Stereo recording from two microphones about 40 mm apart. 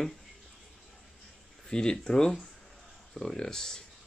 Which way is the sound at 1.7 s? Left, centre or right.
Centre.